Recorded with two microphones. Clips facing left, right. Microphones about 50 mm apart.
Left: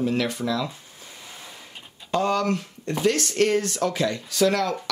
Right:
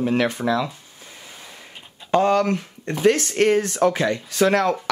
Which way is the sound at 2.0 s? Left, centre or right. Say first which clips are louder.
Right 5 dB; right.